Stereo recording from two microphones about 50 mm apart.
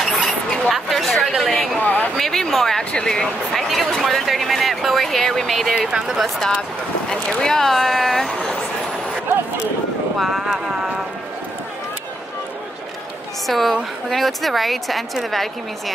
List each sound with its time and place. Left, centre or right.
0.0 s a sound: centre
1.8 s a sound: left
2.1 s a sound: centre
2.8 s speech: left
3.6 s speech: centre
5.8 s speech: centre
7.1 s speech: centre
10.1 s speech: centre
13.5 s speech: centre